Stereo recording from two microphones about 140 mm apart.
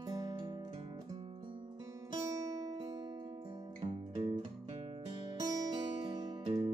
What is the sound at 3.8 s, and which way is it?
Music, 55° right (ahead or behind).